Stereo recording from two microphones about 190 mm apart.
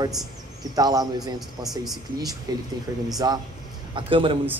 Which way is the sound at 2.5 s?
20° right (ahead or behind).